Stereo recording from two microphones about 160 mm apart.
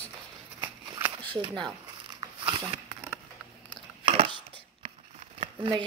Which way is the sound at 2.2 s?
30° right (ahead or behind).